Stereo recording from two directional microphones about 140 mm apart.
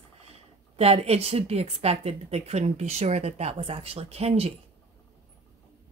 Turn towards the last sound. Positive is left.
turn(degrees=-45)  # may be behind; listen again after turning